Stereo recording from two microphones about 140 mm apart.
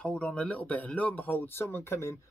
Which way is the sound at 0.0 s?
5° left (ahead or behind).